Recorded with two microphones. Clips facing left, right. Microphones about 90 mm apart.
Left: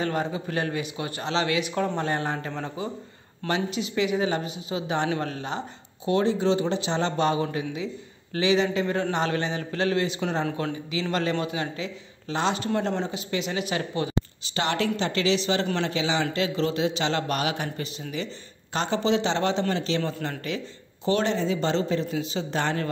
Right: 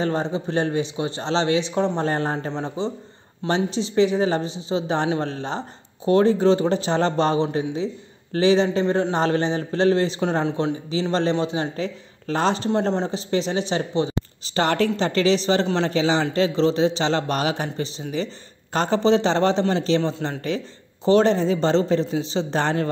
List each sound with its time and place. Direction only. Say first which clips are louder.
0.0 s a man's voice: right 4 dB; 30° right (ahead or behind)
2.0 s a man's voice: right 4 dB; 35° right (ahead or behind)
2.5 s a man's voice: right 5 dB; 25° right (ahead or behind)
11.7 s a man's voice: right 6 dB; 40° right (ahead or behind); by 14.1 s 25° right (ahead or behind)
14.5 s a man's voice: right 5 dB; 40° right (ahead or behind)